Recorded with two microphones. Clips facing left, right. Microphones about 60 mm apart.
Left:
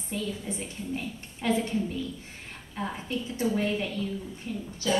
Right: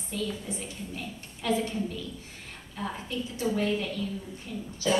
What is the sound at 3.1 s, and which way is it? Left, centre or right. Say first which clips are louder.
A woman's voice: left 2 dB; left.